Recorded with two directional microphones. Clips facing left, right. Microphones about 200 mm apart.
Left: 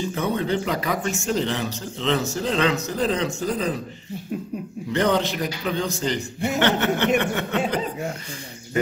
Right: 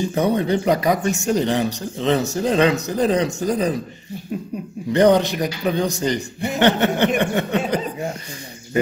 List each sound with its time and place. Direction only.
0.1 s a man's voice: 15° right (ahead or behind)
4.9 s a man's voice: 15° right (ahead or behind)
7.2 s a sound: 15° right (ahead or behind)